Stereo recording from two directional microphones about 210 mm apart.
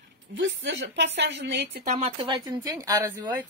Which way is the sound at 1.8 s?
30° right (ahead or behind).